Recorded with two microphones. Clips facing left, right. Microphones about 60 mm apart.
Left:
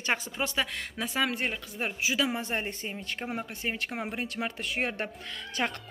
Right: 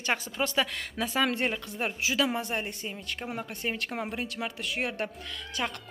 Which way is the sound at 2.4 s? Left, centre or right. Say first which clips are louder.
Even; left.